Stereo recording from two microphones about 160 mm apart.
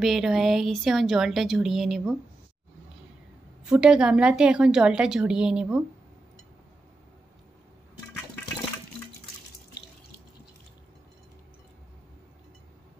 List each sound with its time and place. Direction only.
0.0 s a woman's voice: centre (ahead or behind)
3.6 s a woman's voice: 5° right (ahead or behind)